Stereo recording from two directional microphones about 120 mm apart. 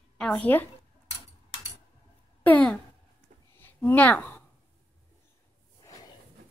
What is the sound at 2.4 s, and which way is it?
Speech, 10° left (ahead or behind).